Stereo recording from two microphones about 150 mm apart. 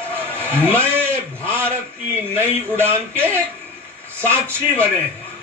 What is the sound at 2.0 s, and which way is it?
A man's voice, 15° right (ahead or behind).